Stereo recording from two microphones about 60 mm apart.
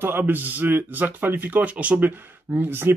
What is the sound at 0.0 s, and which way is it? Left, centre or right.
Speech, right.